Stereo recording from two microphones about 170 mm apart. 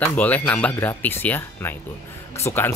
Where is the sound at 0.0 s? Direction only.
10° left (ahead or behind).